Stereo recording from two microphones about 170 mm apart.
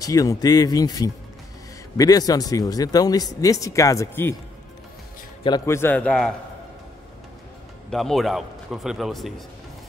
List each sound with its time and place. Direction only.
0.0 s speech: 20° left (ahead or behind)
5.7 s speech: 15° left (ahead or behind)
7.9 s a man's voice: centre (ahead or behind)